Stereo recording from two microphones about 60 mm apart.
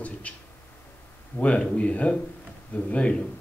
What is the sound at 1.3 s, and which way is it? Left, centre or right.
Speech, centre.